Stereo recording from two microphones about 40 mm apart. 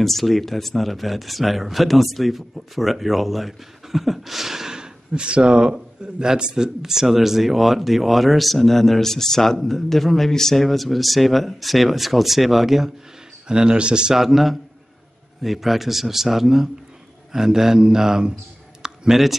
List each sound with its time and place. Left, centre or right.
0.0 s speech: centre
13.5 s speech: right
14.1 s speech: centre
18.8 s a sound: centre